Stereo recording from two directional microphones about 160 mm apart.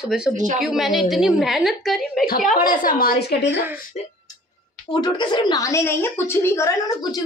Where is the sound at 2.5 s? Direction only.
60° left (ahead or behind); by 3.5 s 90° left.